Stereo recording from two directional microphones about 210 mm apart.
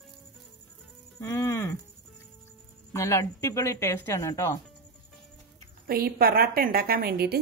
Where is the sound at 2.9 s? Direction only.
10° left (ahead or behind).